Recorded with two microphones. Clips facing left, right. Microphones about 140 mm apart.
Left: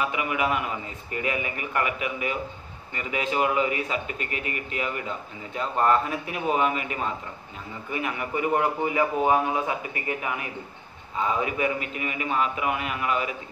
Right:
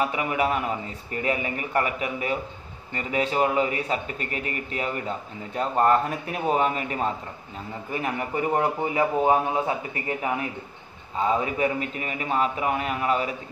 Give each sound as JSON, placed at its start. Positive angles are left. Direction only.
{"t": 0.0, "sound": "a man's voice", "side_deg": -35}
{"t": 11.4, "sound": "a man's voice", "side_deg": -35}